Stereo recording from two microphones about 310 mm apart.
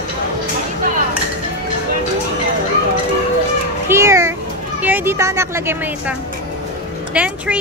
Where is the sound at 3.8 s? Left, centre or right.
Centre.